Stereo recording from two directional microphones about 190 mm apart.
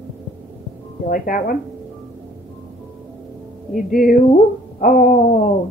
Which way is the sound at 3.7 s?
45° left (ahead or behind).